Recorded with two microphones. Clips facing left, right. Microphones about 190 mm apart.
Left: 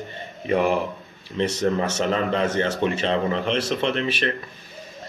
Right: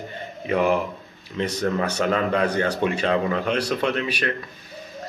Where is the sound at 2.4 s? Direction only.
25° left (ahead or behind).